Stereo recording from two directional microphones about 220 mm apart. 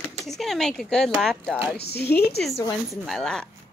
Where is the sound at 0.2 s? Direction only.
Centre (ahead or behind).